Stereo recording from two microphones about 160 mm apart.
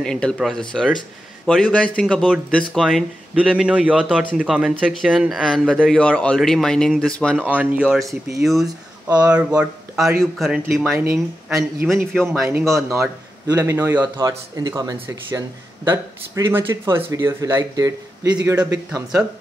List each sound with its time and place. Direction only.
0.0 s a man's voice: 5° left (ahead or behind)
7.4 s speech: 10° right (ahead or behind)
8.6 s speech: 20° right (ahead or behind)
9.2 s a man's voice: 5° right (ahead or behind)
12.4 s speech: 15° right (ahead or behind)
14.0 s speech: 25° right (ahead or behind)
18.4 s a man's voice: 10° right (ahead or behind)